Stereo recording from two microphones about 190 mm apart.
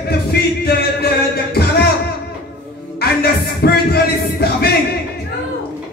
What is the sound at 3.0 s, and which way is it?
Music, 55° left (ahead or behind).